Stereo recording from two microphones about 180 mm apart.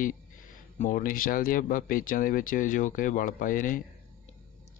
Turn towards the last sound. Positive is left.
turn(degrees=50)  # may be behind; listen again after turning